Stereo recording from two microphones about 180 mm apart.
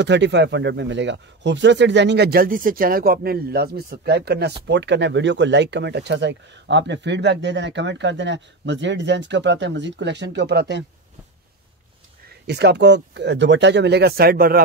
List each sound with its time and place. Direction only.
0.0 s speech: 75° right (ahead or behind)
12.4 s speech: 70° right (ahead or behind)